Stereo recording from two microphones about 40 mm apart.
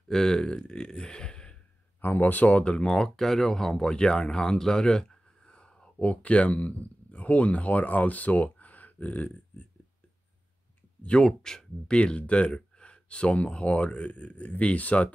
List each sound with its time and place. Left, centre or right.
0.1 s speech: centre
2.0 s speech: left
2.6 s speech: left
2.9 s speech: centre; by 9.7 s left
11.0 s speech: left
11.2 s speech: centre
11.9 s speech: left